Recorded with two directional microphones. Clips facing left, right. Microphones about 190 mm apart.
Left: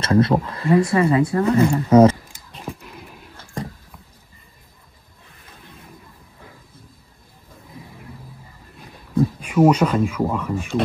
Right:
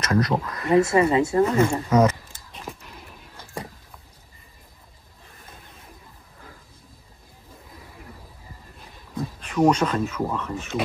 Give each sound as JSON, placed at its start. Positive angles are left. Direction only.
{"t": 0.0, "sound": "speech", "side_deg": 30}
{"t": 0.7, "sound": "a woman's voice", "side_deg": -25}
{"t": 1.4, "sound": "speech", "side_deg": 30}
{"t": 9.4, "sound": "speech", "side_deg": 10}